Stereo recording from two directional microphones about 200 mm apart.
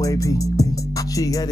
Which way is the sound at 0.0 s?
15° left (ahead or behind).